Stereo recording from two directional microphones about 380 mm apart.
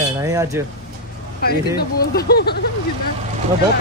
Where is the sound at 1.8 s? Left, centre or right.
Left.